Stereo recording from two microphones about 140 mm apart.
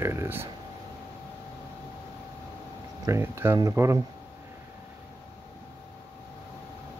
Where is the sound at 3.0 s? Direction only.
20° right (ahead or behind).